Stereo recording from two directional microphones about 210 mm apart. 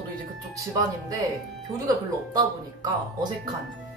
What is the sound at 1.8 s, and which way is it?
Speech, 20° right (ahead or behind).